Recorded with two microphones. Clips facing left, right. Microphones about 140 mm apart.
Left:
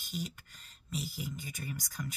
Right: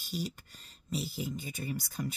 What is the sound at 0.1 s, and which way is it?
Speech, 35° right (ahead or behind).